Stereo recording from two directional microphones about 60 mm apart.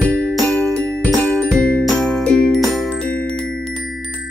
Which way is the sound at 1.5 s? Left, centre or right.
Centre.